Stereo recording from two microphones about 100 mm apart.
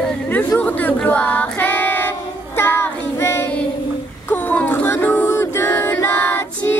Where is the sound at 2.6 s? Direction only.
20° left (ahead or behind).